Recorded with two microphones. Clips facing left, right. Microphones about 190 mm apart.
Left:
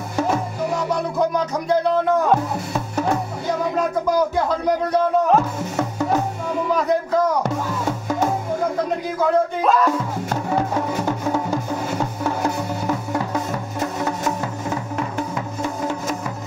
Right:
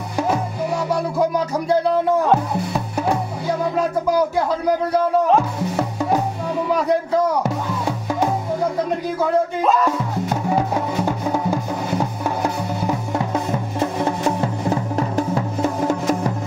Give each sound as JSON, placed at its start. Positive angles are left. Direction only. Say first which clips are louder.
{"t": 0.8, "sound": "music", "louder": "right 2 dB", "side_deg": -10}
{"t": 5.3, "sound": "music", "louder": "right 1 dB", "side_deg": -10}
{"t": 9.6, "sound": "music", "louder": "even", "side_deg": 0}
{"t": 11.1, "sound": "music", "louder": "right 1 dB", "side_deg": -15}